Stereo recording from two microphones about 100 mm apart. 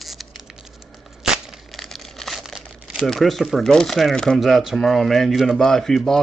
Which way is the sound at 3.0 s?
5° left (ahead or behind).